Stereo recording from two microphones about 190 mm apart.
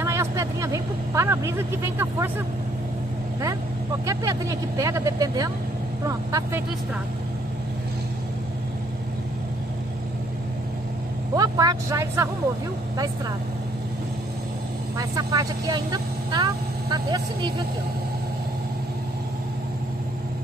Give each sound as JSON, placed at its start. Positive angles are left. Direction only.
{"t": 0.0, "sound": "speech", "side_deg": -15}
{"t": 4.0, "sound": "speech", "side_deg": -15}
{"t": 11.3, "sound": "speech", "side_deg": -20}
{"t": 15.0, "sound": "speech", "side_deg": -20}